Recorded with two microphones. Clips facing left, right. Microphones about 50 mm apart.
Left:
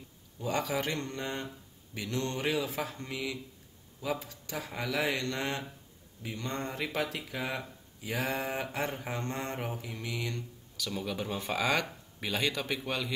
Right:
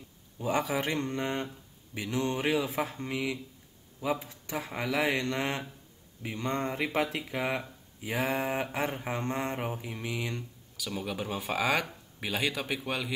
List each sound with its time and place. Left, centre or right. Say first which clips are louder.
0.4 s speech: right 2 dB; centre